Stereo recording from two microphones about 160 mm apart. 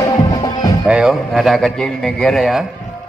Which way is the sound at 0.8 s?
5° right (ahead or behind).